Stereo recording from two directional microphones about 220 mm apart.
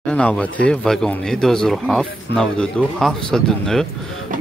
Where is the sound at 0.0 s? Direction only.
5° left (ahead or behind).